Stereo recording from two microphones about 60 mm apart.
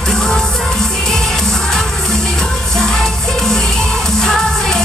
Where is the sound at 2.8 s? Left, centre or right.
Centre.